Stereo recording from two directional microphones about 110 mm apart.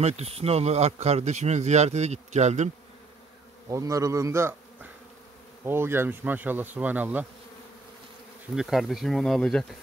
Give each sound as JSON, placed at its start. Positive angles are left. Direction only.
{"t": 0.0, "sound": "speech", "side_deg": -75}
{"t": 3.6, "sound": "bee", "side_deg": -30}
{"t": 5.7, "sound": "speech", "side_deg": -20}
{"t": 8.5, "sound": "speech", "side_deg": 0}